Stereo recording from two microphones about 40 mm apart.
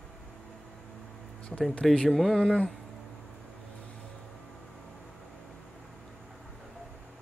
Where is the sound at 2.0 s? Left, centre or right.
Centre.